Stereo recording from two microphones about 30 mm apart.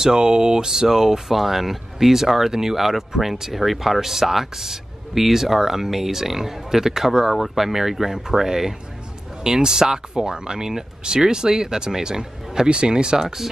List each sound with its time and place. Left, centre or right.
0.0 s speech: right
1.4 s speech: centre
12.6 s speech: right